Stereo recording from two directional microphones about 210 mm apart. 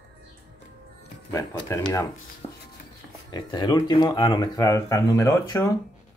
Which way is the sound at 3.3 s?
20° left (ahead or behind).